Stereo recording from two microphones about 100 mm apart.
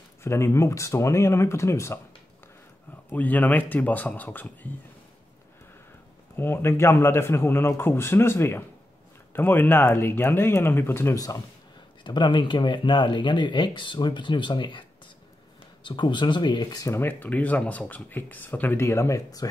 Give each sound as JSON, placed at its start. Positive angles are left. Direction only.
{"t": 0.2, "sound": "speech", "side_deg": 25}
{"t": 3.1, "sound": "speech", "side_deg": 15}
{"t": 6.3, "sound": "speech", "side_deg": 25}
{"t": 11.1, "sound": "speech", "side_deg": 35}
{"t": 12.0, "sound": "speech", "side_deg": 50}
{"t": 16.8, "sound": "speech", "side_deg": 25}